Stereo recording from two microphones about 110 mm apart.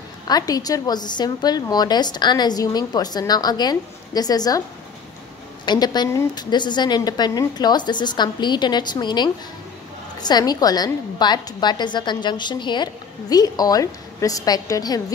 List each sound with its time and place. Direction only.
0.3 s a woman's voice: 35° left (ahead or behind)
5.7 s a woman's voice: 40° left (ahead or behind)